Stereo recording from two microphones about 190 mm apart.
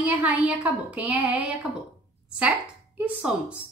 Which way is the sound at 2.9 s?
10° right (ahead or behind).